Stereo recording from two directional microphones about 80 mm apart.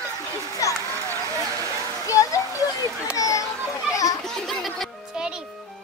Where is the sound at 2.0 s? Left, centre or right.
Left.